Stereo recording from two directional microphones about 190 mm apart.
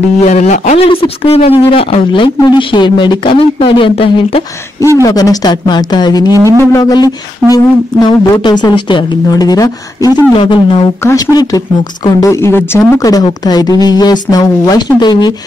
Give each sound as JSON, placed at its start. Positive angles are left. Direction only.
{"t": 0.2, "sound": "speech", "side_deg": 35}
{"t": 5.0, "sound": "speech", "side_deg": 20}
{"t": 6.3, "sound": "speech", "side_deg": -15}
{"t": 6.6, "sound": "speech", "side_deg": 15}
{"t": 11.1, "sound": "speech", "side_deg": 15}